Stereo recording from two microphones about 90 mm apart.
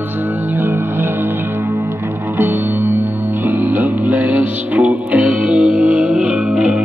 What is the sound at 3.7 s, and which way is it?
Music, 20° right (ahead or behind).